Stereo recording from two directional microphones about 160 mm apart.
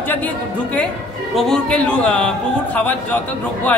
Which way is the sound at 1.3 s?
5° left (ahead or behind).